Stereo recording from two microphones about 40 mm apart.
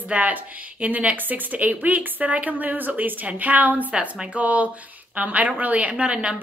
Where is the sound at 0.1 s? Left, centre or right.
Right.